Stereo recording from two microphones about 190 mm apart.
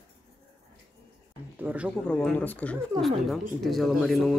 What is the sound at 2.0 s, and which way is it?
Speech, 5° left (ahead or behind).